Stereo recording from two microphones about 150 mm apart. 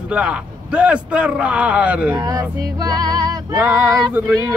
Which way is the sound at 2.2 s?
25° right (ahead or behind).